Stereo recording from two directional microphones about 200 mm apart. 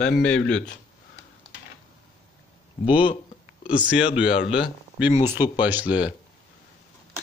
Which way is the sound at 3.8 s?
5° right (ahead or behind).